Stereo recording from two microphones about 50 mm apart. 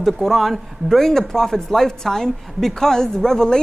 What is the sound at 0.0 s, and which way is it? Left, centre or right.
A woman's voice, centre.